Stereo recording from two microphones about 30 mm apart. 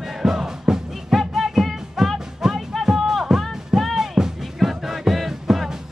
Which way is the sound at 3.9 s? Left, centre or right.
Centre.